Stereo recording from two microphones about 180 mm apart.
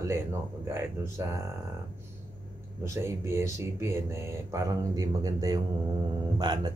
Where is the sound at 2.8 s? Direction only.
15° right (ahead or behind).